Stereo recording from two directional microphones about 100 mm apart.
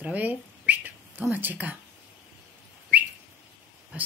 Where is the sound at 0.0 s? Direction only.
15° right (ahead or behind).